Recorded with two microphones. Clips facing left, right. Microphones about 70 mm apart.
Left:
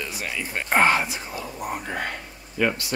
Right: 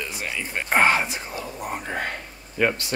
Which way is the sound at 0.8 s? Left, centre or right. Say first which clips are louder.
Even; right.